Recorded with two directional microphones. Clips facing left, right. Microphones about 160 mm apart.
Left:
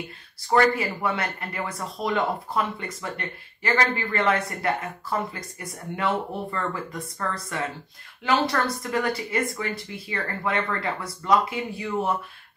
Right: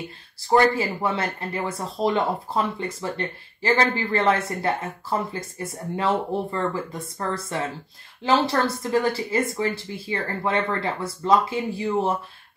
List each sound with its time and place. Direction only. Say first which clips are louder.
0.5 s speech: right 2 dB; 25° right (ahead or behind)